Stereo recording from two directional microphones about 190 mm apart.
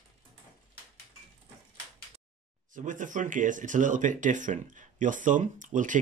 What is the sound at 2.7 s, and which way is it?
Speech, 40° right (ahead or behind).